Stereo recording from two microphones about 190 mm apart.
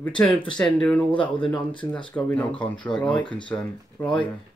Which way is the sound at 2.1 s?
5° left (ahead or behind).